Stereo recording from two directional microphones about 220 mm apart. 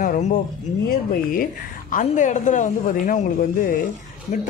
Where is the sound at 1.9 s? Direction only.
35° left (ahead or behind).